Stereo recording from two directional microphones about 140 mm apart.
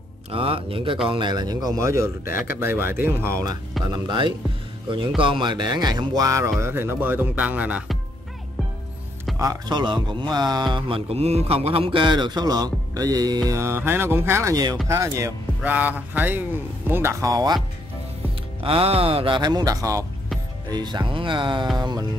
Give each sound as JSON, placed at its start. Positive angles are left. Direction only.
{"t": 0.3, "sound": "speech", "side_deg": -40}
{"t": 3.8, "sound": "speech", "side_deg": -30}
{"t": 9.4, "sound": "speech", "side_deg": -30}
{"t": 15.7, "sound": "speech", "side_deg": -10}
{"t": 18.6, "sound": "speech", "side_deg": -40}